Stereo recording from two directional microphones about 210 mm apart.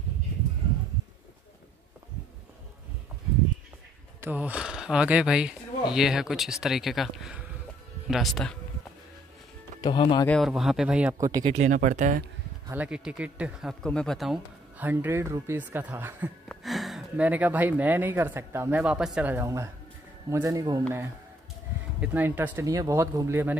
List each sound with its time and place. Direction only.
4.2 s speech: 10° right (ahead or behind)
9.8 s speech: 20° left (ahead or behind)
10.2 s speech: centre (ahead or behind); by 11.4 s 15° right (ahead or behind)
11.4 s speech: 30° right (ahead or behind)
12.6 s speech: 5° right (ahead or behind)
22.0 s speech: 10° right (ahead or behind)